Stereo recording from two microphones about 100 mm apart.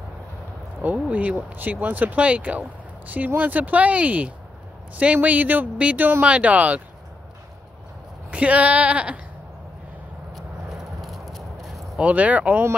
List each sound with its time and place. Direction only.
0.8 s speech: 15° right (ahead or behind)
8.3 s speech: 15° right (ahead or behind)
10.3 s a sound: centre (ahead or behind)
12.0 s speech: 15° right (ahead or behind)